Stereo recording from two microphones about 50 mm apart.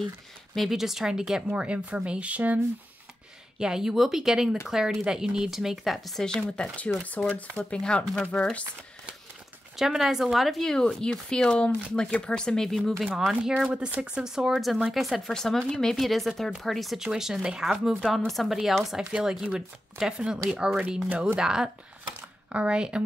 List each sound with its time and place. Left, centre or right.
0.6 s speech: centre
1.5 s speech: right
3.5 s speech: centre
6.5 s speech: left
9.8 s speech: centre
10.6 s speech: centre
13.3 s speech: right
14.5 s speech: centre
16.0 s speech: centre